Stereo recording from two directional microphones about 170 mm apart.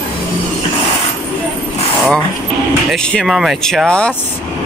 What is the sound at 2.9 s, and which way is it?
Speech, 5° left (ahead or behind).